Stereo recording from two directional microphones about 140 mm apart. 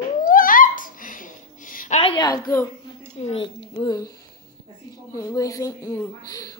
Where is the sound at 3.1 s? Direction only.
45° left (ahead or behind); by 4.1 s 30° left (ahead or behind).